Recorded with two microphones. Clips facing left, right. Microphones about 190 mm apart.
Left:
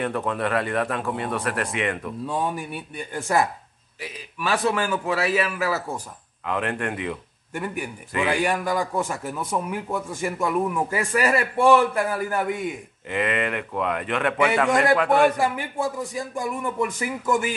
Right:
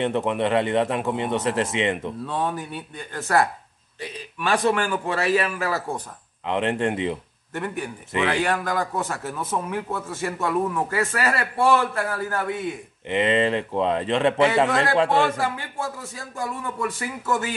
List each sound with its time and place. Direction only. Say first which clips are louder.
0.0 s speech: right 3 dB; 25° right (ahead or behind)
2.2 s a man's voice: left 1 dB; 10° left (ahead or behind)
6.4 s speech: right 3 dB; 25° right (ahead or behind)
7.5 s a man's voice: right 1 dB; 10° left (ahead or behind)
13.1 s speech: right 4 dB; 25° right (ahead or behind)
15.3 s a man's voice: left 3 dB; 15° left (ahead or behind)